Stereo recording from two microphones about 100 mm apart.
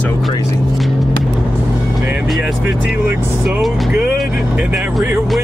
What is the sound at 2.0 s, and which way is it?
Speech, 15° right (ahead or behind).